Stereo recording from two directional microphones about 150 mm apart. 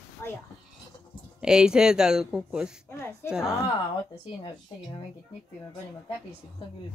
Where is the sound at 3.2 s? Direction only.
5° right (ahead or behind).